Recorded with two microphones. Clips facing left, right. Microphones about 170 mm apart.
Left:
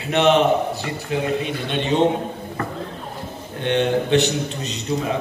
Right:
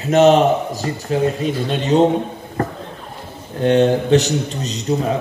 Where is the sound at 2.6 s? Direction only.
40° right (ahead or behind).